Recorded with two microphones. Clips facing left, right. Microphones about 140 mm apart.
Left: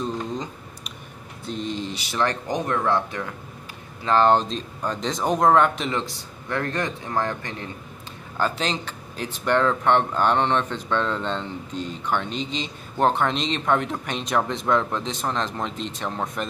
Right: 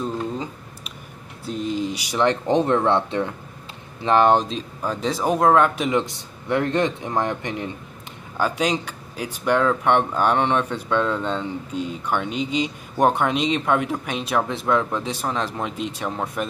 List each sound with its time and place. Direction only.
0.0 s a sound: 5° right (ahead or behind)
2.4 s speech: 25° right (ahead or behind)
4.0 s speech: 15° right (ahead or behind)